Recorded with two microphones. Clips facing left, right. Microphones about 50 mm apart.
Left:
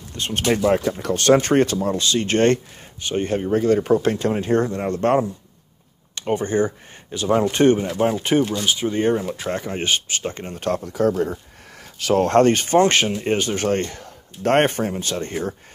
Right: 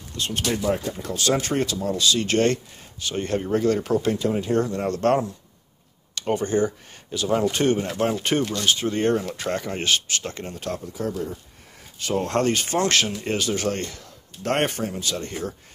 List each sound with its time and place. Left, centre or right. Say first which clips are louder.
0.1 s speech: left 2 dB; left
0.5 s speech: left 7 dB; left
1.0 s speech: left 7 dB; left
3.3 s speech: left 3 dB; centre
4.0 s speech: left 2 dB; left
6.3 s speech: left 2 dB; left
8.0 s speech: left 4 dB; centre
9.8 s speech: left 1 dB; centre
10.5 s speech: left 9 dB; left
10.8 s speech: left 8 dB; left
12.3 s speech: left 7 dB; left